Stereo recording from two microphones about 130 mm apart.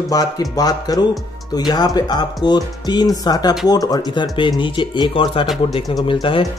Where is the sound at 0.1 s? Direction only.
30° left (ahead or behind).